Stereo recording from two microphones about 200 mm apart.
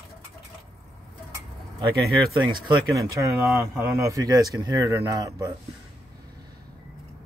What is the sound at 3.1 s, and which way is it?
Speech, 15° right (ahead or behind).